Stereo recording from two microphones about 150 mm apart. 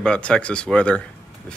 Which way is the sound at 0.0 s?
5° left (ahead or behind).